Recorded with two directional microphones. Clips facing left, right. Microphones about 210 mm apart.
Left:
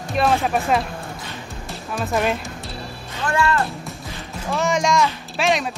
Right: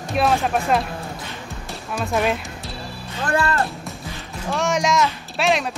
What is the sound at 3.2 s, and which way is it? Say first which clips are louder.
Speech: left 1 dB; 35° right (ahead or behind).